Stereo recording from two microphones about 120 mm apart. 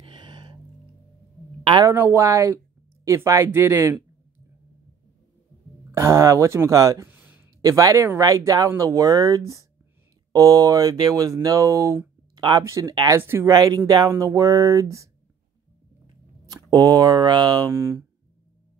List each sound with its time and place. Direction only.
0.0 s music: 40° right (ahead or behind)
1.9 s speech: 20° right (ahead or behind)
5.9 s speech: 25° right (ahead or behind)
7.1 s a sound: 15° right (ahead or behind)
7.6 s speech: 30° right (ahead or behind)
12.4 s speech: 40° right (ahead or behind)
12.6 s speech: 25° right (ahead or behind)
13.2 s speech: 20° right (ahead or behind)
13.5 s speech: 30° right (ahead or behind)
16.4 s speech: 30° right (ahead or behind)
17.6 s speech: 20° right (ahead or behind)